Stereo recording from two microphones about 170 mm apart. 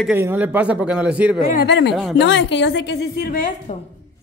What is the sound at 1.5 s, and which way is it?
A woman's voice, 75° left (ahead or behind).